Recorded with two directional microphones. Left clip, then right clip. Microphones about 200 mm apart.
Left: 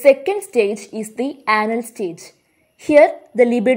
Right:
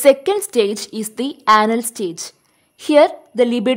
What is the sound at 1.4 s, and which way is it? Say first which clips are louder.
A woman's voice: right 5 dB; 15° right (ahead or behind).